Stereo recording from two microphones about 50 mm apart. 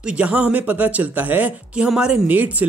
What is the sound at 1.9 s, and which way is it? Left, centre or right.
Speech, centre.